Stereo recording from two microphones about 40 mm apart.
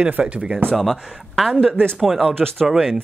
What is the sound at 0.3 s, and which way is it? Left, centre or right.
Speech, right.